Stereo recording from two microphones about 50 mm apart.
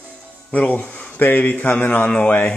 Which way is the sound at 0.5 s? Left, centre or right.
Left.